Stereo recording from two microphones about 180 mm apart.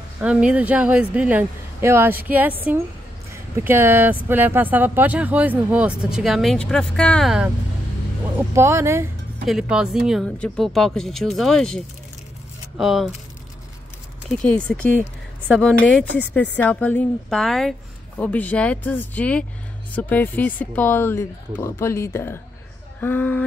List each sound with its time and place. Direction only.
0.2 s speech: 5° right (ahead or behind)
8.4 s speech: 15° right (ahead or behind)
9.5 s speech: 5° right (ahead or behind)
14.4 s a woman's voice: 5° left (ahead or behind)